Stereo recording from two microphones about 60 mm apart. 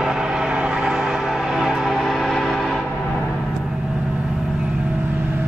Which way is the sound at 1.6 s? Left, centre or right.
Centre.